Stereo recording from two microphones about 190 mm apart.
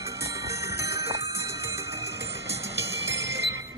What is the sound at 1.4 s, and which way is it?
Jingle bell, 15° right (ahead or behind).